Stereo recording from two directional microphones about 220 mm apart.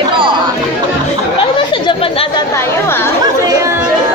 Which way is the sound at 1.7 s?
25° left (ahead or behind).